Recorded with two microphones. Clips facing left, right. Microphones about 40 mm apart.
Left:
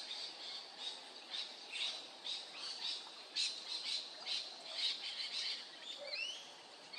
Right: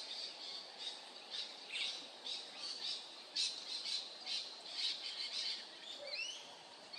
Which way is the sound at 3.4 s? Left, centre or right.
Left.